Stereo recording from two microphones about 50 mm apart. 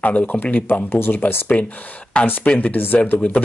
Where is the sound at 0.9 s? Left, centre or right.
Left.